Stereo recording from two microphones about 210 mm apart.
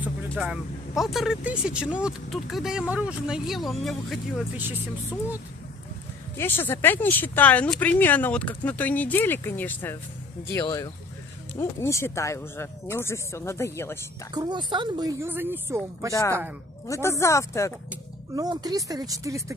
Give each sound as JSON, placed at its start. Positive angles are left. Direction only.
{"t": 0.3, "sound": "speech", "side_deg": 0}
{"t": 6.3, "sound": "speech", "side_deg": 10}
{"t": 14.3, "sound": "speech", "side_deg": -20}
{"t": 16.8, "sound": "speech", "side_deg": 15}
{"t": 18.3, "sound": "speech", "side_deg": -20}